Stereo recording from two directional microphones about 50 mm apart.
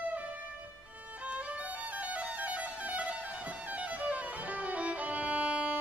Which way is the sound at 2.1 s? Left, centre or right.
Right.